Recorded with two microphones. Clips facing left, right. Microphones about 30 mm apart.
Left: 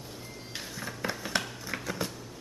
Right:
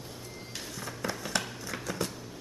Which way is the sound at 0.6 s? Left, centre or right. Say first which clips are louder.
Left 1 dB; centre.